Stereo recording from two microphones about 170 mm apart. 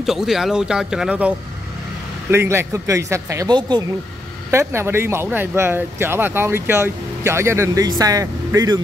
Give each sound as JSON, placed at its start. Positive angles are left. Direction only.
{"t": 0.0, "sound": "a man's voice", "side_deg": 0}
{"t": 2.3, "sound": "speech", "side_deg": -15}
{"t": 4.5, "sound": "speech", "side_deg": -15}